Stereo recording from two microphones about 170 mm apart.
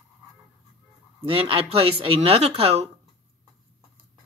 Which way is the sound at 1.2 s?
35° right (ahead or behind).